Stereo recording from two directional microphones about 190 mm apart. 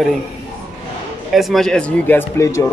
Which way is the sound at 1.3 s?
Centre (ahead or behind).